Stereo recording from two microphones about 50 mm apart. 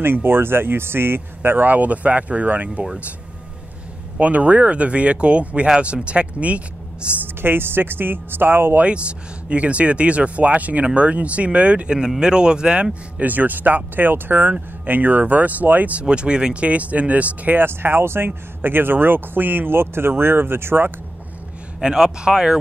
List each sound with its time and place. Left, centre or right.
0.0 s speech: right
4.2 s speech: right
7.4 s speech: right
8.7 s speech: right
13.2 s speech: right
16.0 s speech: right
17.6 s speech: right
21.8 s speech: centre